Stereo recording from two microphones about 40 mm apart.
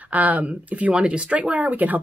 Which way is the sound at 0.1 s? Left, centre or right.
Right.